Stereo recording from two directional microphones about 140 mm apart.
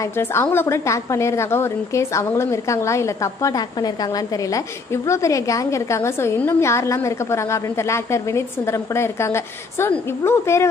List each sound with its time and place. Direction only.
0.0 s a woman's voice: 15° left (ahead or behind)